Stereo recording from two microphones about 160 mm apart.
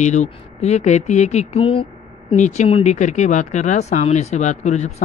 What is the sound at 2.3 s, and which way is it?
Speech, 50° left (ahead or behind).